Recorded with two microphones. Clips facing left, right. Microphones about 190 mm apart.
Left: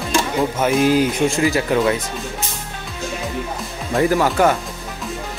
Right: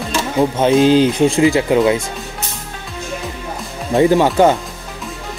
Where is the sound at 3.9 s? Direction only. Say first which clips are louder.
Right 5 dB; 20° right (ahead or behind).